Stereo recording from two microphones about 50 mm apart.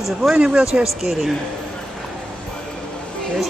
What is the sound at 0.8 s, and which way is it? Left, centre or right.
Speech, centre.